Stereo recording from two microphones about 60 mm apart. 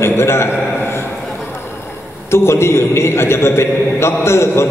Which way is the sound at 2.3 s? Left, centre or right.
Left.